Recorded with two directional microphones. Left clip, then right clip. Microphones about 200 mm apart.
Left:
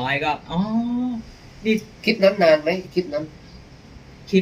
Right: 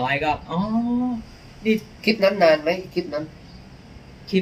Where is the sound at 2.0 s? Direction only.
20° right (ahead or behind).